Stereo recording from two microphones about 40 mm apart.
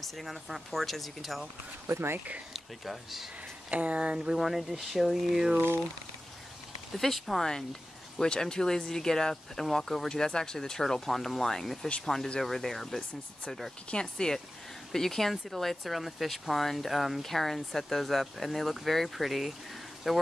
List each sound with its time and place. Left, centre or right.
0.0 s speech: centre
1.9 s speech: right
2.5 s speech: centre
3.7 s speech: right
4.4 s speech: centre
7.0 s speech: centre
8.2 s speech: centre
13.8 s speech: left; by 20.2 s centre